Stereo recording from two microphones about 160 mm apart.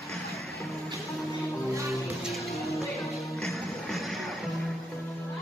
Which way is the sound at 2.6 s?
20° left (ahead or behind).